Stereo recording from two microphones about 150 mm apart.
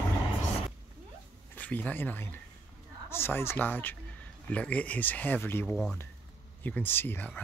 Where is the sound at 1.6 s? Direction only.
10° left (ahead or behind).